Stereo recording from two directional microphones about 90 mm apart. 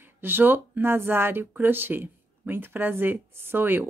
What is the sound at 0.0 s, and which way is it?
A woman's voice, 25° right (ahead or behind).